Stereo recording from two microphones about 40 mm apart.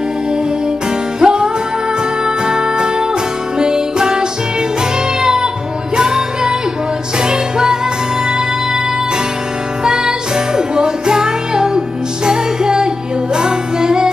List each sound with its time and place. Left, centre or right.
1.2 s music: centre
9.8 s music: centre